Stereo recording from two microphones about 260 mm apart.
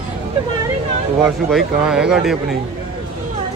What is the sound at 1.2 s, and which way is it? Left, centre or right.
Speech, centre.